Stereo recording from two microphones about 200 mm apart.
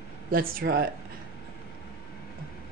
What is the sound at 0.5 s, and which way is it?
Speech, 50° right (ahead or behind).